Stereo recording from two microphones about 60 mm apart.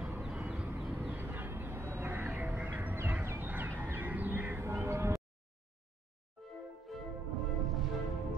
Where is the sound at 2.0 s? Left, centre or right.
Right.